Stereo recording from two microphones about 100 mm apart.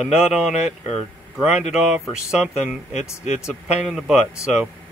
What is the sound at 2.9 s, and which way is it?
Speech, 90° left.